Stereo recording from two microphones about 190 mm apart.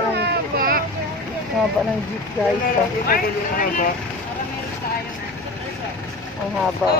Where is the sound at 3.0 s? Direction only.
50° left (ahead or behind).